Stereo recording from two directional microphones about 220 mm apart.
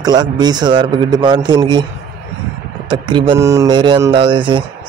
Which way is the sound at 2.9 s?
20° right (ahead or behind).